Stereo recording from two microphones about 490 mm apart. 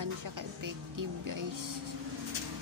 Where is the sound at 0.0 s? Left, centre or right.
Right.